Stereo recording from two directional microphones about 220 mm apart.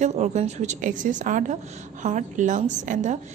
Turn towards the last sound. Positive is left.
turn(degrees=-35)  # may be behind; listen again after turning